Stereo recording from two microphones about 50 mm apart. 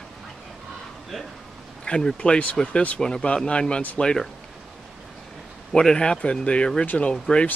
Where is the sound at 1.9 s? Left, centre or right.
Centre.